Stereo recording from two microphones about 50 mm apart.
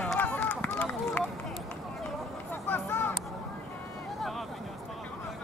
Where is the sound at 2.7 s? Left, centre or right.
Left.